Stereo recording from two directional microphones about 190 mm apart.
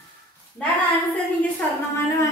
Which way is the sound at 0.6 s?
10° left (ahead or behind).